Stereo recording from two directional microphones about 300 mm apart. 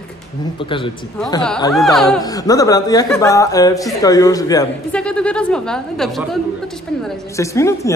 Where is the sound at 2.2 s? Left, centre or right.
Centre.